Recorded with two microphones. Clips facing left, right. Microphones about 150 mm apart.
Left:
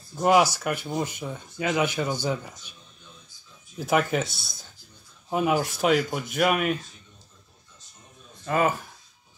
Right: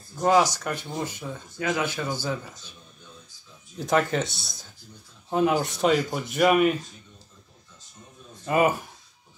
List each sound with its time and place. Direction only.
0.2 s speech: 10° left (ahead or behind)
3.7 s speech: 5° left (ahead or behind)
8.5 s speech: 10° right (ahead or behind)